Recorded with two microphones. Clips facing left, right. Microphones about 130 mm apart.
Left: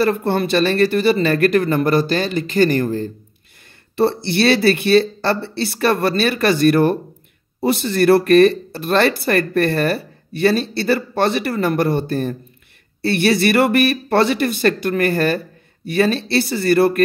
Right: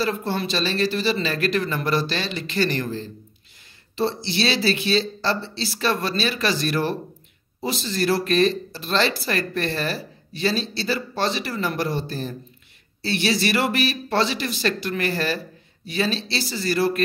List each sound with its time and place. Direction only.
0.0 s speech: 60° left (ahead or behind)